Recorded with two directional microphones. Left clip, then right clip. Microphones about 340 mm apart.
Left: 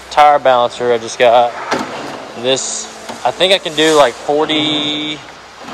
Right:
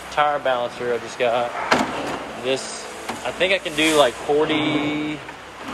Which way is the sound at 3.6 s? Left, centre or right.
Left.